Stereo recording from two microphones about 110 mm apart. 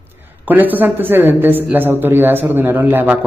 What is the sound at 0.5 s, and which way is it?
A man's voice, 15° right (ahead or behind).